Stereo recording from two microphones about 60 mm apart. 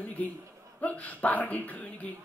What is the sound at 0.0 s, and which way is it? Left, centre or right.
Chuckle, left.